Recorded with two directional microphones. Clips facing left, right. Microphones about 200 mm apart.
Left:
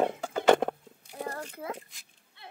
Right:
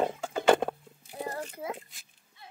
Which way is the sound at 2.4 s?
65° left (ahead or behind).